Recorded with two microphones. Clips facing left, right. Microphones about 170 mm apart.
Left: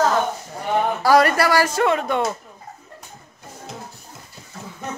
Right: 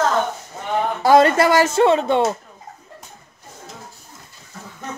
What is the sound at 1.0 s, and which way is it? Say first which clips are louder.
Speech: right 4 dB; 25° right (ahead or behind).